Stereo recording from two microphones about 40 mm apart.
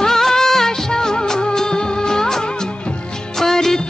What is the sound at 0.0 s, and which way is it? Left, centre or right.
Music of bollywood, centre.